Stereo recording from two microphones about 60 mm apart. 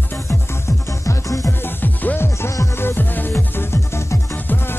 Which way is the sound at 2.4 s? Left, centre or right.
Left.